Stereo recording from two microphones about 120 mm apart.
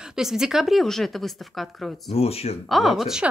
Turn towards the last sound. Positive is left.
turn(degrees=-5)  # may be behind; listen again after turning